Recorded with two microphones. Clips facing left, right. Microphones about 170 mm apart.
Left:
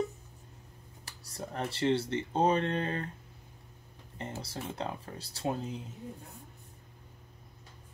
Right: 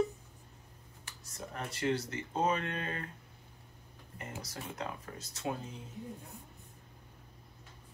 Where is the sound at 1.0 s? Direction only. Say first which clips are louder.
Left 4 dB; 35° left (ahead or behind).